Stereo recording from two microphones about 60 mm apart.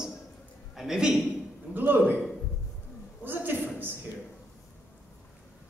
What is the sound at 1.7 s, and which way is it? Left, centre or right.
Speech, right.